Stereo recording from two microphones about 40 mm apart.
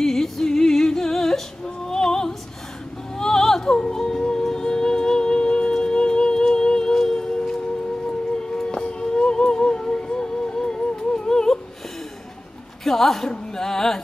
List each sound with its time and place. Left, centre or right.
0.0 s music: centre
1.9 s opera: centre
3.2 s music: centre
8.5 s music: centre
12.8 s a sound: centre
13.3 s music: centre